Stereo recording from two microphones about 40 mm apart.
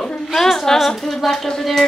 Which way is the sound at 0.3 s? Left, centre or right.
Centre.